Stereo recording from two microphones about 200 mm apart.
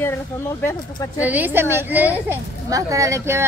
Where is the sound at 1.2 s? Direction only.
10° right (ahead or behind).